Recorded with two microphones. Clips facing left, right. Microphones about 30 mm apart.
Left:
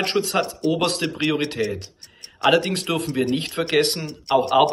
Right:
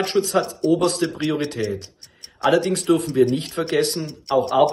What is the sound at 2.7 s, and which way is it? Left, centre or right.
Speech, left.